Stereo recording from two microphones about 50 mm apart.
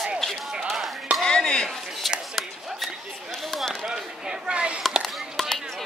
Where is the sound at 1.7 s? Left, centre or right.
Centre.